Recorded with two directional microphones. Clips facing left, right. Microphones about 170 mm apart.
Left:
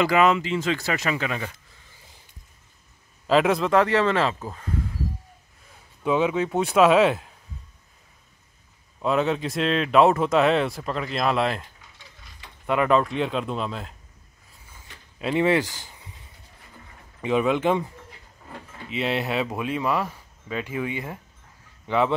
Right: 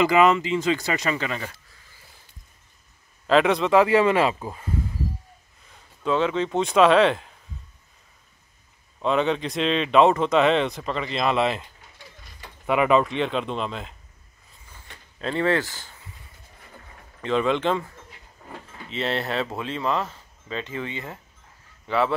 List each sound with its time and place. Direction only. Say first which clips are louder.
0.0 s speech: right 1 dB; centre (ahead or behind)
3.3 s speech: right 1 dB; 5° left (ahead or behind)
5.7 s speech: left 1 dB; 10° left (ahead or behind)
9.0 s speech: even; 5° left (ahead or behind)
15.1 s speech: left 2 dB; 10° left (ahead or behind)
17.2 s speech: left 1 dB; 10° left (ahead or behind)